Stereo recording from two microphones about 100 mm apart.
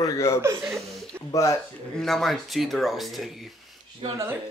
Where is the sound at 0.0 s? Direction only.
30° left (ahead or behind).